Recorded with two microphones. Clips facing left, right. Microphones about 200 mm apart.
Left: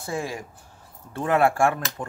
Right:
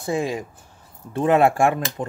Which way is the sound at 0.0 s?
20° right (ahead or behind).